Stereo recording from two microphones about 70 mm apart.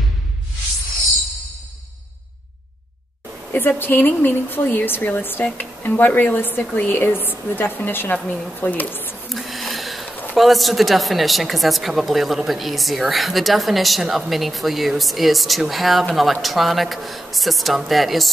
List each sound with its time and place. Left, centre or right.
3.5 s speech: left
8.2 s a woman's voice: centre
8.5 s speech: left
9.3 s a sound: centre
10.0 s a sound: left
10.3 s a woman's voice: centre